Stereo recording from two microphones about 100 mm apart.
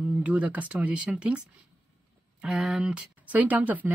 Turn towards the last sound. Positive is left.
turn(degrees=-15)  # may be behind; listen again after turning